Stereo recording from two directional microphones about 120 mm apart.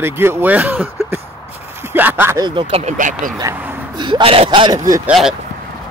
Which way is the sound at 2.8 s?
80° right.